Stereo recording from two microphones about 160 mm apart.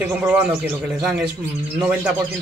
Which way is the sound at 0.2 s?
15° right (ahead or behind).